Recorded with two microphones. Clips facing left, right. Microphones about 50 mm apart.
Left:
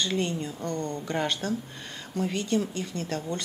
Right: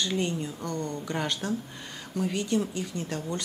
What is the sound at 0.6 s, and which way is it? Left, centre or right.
Speech, left.